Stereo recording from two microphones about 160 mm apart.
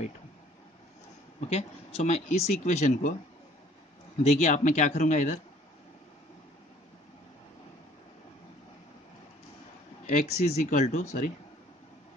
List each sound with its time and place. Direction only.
1.5 s speech: 40° left (ahead or behind)
4.2 s speech: 50° left (ahead or behind)
10.0 s speech: 45° left (ahead or behind)